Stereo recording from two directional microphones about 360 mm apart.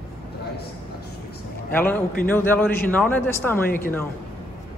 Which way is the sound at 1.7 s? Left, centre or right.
Centre.